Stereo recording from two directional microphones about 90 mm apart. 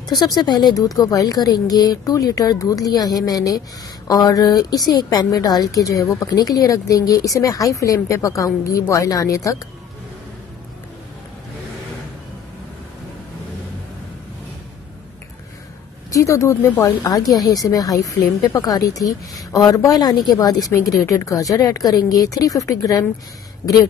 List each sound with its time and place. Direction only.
0.1 s a woman's voice: 50° left (ahead or behind)
16.1 s a woman's voice: 35° left (ahead or behind)
17.0 s a woman's voice: 45° left (ahead or behind)